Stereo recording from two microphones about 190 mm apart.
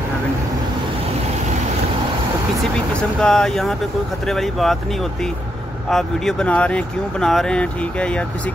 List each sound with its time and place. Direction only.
3.2 s speech: 5° left (ahead or behind)
5.9 s speech: centre (ahead or behind)